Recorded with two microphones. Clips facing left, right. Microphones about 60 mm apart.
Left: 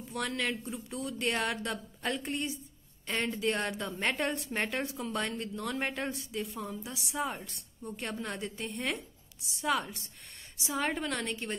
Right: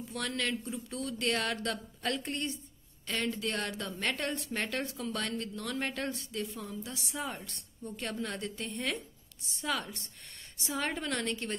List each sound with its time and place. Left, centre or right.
0.1 s speech: centre
3.1 s a woman's voice: left; by 11.5 s centre